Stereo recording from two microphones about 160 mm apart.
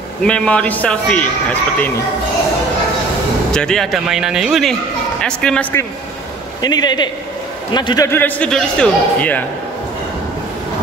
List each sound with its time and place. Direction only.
0.2 s a man's voice: 5° left (ahead or behind)
3.5 s a man's voice: 5° left (ahead or behind)
6.6 s a man's voice: 25° left (ahead or behind); by 9.4 s 10° left (ahead or behind)